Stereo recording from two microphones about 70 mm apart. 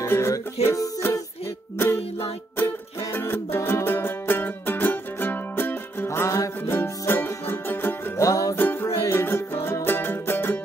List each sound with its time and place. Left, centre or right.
0.0 s music: left
1.8 s music: left
3.1 s music: left
6.7 s music: left
8.2 s music: left
8.8 s music: left